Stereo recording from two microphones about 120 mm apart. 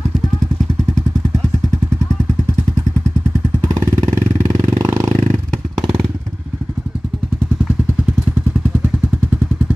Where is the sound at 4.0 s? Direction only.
30° right (ahead or behind).